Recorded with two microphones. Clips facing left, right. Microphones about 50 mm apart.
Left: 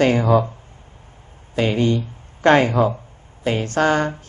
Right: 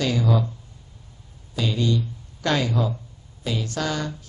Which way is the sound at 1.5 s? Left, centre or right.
Left.